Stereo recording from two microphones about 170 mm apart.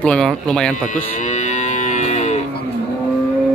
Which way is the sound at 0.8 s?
45° left (ahead or behind).